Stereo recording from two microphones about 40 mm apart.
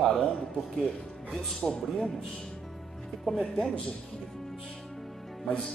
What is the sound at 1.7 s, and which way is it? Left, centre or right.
Speech, centre.